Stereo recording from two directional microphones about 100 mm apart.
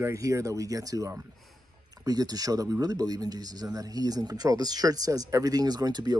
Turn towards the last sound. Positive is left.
turn(degrees=-40)  # may be behind; listen again after turning